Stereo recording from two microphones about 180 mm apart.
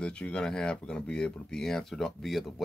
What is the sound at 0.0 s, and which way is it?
Speech, 5° left (ahead or behind).